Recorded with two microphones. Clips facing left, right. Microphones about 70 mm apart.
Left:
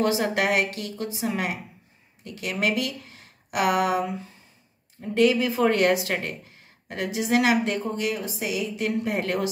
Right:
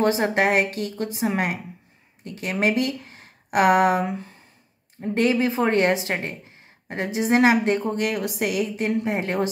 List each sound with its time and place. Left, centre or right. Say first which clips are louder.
0.0 s a woman's voice: right 3 dB; right
5.0 s a woman's voice: even; right
7.9 s a woman's voice: right 3 dB; right
9.0 s a woman's voice: right 1 dB; right